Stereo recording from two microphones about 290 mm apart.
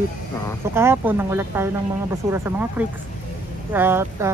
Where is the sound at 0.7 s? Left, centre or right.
Centre.